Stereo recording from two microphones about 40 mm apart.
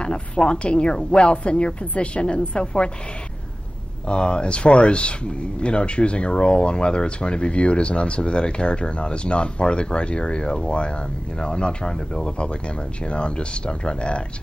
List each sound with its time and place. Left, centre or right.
0.0 s speech: left
4.1 s speech: left